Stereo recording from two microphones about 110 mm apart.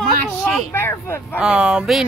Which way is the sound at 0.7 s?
20° left (ahead or behind).